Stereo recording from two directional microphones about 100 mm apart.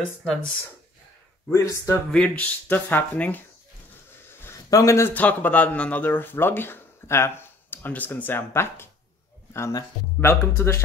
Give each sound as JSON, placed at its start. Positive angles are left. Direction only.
{"t": 1.5, "sound": "speech", "side_deg": 30}
{"t": 2.0, "sound": "speech", "side_deg": 10}
{"t": 4.6, "sound": "speech", "side_deg": 30}
{"t": 5.1, "sound": "speech", "side_deg": 15}